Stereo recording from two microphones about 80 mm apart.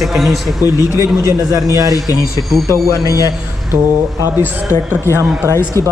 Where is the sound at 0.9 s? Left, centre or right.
Right.